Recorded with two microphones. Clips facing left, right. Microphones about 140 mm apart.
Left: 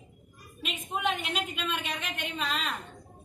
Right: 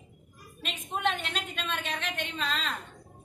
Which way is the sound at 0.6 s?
10° left (ahead or behind).